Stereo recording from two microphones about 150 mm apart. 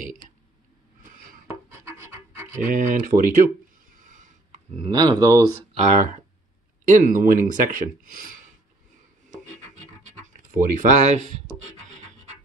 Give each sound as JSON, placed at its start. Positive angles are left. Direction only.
{"t": 1.5, "sound": "rub", "side_deg": -20}
{"t": 2.6, "sound": "speech", "side_deg": -60}
{"t": 3.9, "sound": "a sound", "side_deg": -60}
{"t": 4.8, "sound": "speech", "side_deg": -30}
{"t": 5.9, "sound": "speech", "side_deg": -55}
{"t": 10.2, "sound": "speech", "side_deg": -60}